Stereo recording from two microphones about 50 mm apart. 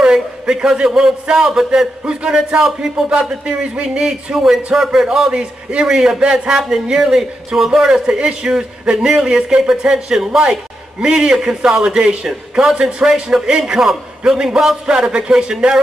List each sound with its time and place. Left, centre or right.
0.0 s a sound: centre
1.3 s a man's voice: centre
4.0 s a man's voice: centre
5.3 s speech: right
5.9 s a man's voice: centre